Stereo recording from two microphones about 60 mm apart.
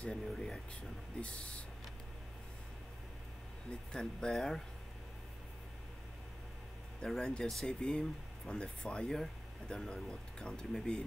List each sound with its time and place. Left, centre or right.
0.0 s speech: centre
1.2 s speech: left
3.7 s speech: centre
7.0 s speech: centre